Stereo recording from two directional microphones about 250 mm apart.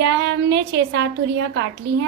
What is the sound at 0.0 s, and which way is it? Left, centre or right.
A woman's voice, right.